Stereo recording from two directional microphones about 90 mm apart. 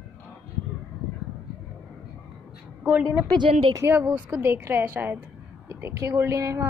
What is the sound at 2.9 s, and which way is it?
A woman's voice, 15° right (ahead or behind).